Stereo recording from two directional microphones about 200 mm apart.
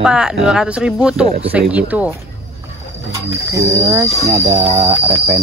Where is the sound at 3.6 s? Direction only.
15° right (ahead or behind).